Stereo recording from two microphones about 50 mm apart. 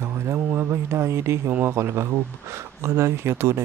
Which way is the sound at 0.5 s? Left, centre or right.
Right.